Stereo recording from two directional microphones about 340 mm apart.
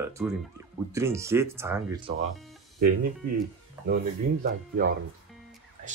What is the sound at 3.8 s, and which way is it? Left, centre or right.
Speech, right.